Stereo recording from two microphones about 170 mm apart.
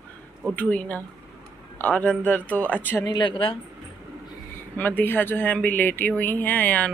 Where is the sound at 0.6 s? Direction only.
10° left (ahead or behind).